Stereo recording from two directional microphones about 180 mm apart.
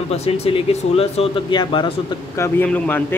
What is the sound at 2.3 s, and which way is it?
Speech, 15° left (ahead or behind).